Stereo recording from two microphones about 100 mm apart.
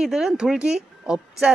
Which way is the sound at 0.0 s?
5° right (ahead or behind).